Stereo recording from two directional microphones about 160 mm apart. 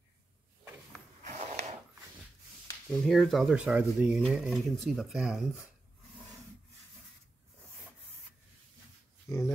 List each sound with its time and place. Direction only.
1.2 s snort: 45° right (ahead or behind)
2.9 s speech: centre (ahead or behind)